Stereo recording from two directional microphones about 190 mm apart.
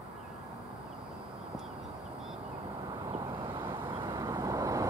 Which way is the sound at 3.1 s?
25° right (ahead or behind).